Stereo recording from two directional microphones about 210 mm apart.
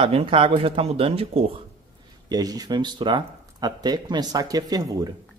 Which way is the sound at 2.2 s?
20° right (ahead or behind).